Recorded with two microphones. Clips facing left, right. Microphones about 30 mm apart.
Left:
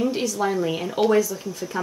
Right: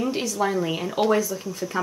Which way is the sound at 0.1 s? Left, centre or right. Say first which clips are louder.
Left 1 dB; centre.